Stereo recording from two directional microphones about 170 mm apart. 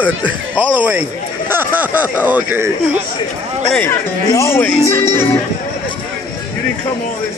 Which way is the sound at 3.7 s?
10° left (ahead or behind).